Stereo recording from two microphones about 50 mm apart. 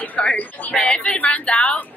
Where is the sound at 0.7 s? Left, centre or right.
Centre.